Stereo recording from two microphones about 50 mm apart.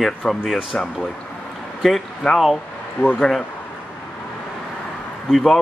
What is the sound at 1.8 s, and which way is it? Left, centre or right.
Speech, centre.